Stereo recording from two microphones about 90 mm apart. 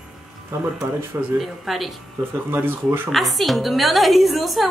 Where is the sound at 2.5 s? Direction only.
20° right (ahead or behind).